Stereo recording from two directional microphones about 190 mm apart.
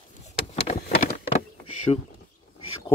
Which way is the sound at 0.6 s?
35° left (ahead or behind).